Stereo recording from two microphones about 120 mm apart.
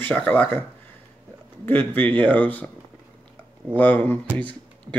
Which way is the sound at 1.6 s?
15° left (ahead or behind).